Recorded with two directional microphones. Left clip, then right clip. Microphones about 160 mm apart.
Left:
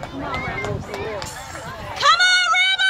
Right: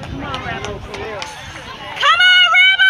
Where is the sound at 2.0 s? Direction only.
20° left (ahead or behind).